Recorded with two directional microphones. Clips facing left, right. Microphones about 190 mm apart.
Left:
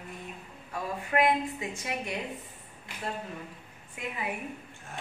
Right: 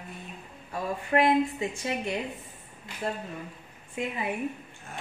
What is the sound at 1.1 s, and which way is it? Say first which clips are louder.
A woman's voice: right 3 dB; 30° right (ahead or behind).